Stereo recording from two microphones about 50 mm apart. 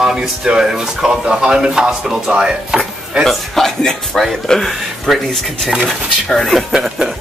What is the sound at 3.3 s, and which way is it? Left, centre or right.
Speech, centre.